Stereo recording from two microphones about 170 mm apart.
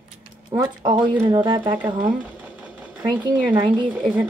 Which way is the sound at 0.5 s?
25° right (ahead or behind).